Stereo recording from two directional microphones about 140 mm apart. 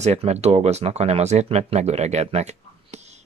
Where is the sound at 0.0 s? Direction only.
50° right (ahead or behind).